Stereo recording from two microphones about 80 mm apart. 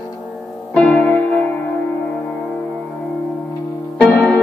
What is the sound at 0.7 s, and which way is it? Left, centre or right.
Music, centre.